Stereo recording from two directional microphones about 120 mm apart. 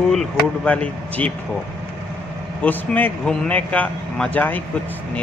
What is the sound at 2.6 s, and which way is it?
Speech, 15° left (ahead or behind).